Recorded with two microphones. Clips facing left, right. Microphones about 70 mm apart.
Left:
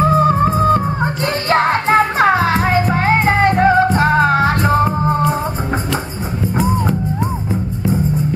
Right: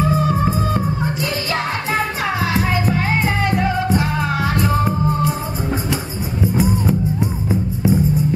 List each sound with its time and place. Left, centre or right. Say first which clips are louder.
0.0 s music: left 5 dB; left